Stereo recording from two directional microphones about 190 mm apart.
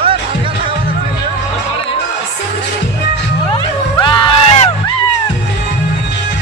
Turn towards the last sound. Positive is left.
turn(degrees=30)  # may be behind; listen again after turning